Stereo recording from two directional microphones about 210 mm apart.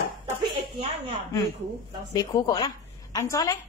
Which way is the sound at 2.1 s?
15° left (ahead or behind).